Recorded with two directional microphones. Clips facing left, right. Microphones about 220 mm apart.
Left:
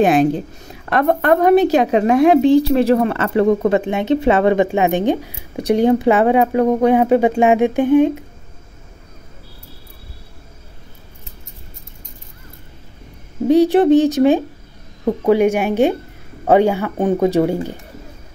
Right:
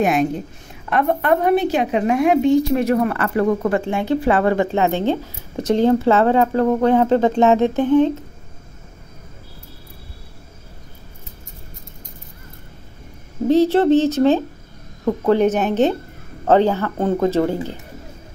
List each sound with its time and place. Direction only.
0.0 s a woman's voice: 30° left (ahead or behind); by 8.2 s 15° left (ahead or behind)
13.5 s a woman's voice: 15° left (ahead or behind)